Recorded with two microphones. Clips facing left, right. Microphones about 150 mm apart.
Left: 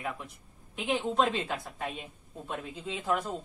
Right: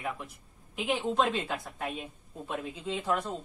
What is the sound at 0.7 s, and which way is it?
Speech, centre (ahead or behind).